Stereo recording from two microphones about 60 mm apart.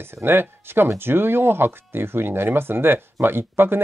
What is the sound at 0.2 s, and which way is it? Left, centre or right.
Speech, right.